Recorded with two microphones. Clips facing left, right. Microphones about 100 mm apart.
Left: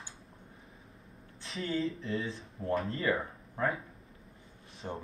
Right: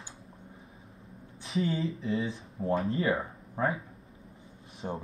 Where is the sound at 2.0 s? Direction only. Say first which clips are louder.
Right 4 dB; centre (ahead or behind).